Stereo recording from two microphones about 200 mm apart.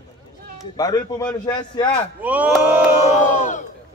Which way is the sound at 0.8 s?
15° left (ahead or behind).